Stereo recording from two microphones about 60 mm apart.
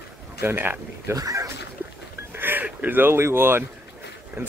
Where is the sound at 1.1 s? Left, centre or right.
Right.